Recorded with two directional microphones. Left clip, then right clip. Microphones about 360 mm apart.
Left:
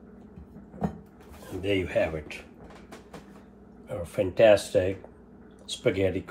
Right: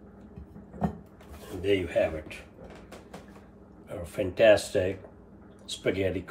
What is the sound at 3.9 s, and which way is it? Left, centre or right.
Speech, centre.